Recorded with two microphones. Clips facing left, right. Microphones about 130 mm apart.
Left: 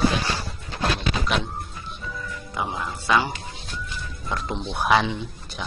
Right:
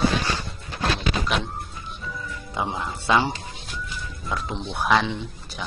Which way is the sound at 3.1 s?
25° right (ahead or behind).